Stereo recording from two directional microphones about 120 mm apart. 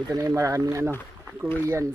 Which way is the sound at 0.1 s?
30° right (ahead or behind).